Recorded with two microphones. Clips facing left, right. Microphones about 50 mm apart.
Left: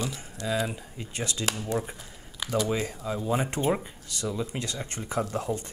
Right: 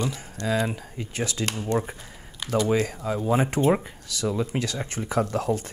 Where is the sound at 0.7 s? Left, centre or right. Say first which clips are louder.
Right 5 dB; right.